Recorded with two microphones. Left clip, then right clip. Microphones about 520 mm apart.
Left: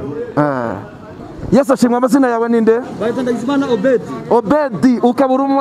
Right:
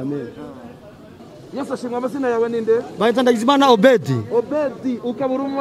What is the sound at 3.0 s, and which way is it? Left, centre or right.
A man's voice, right.